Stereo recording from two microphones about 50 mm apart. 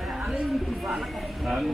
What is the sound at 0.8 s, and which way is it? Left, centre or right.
Speech, centre.